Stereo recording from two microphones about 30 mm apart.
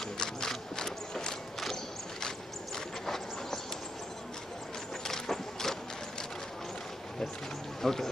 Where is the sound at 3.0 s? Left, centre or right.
Centre.